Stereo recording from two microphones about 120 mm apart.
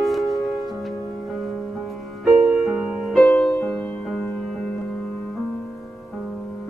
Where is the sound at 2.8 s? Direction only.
5° right (ahead or behind).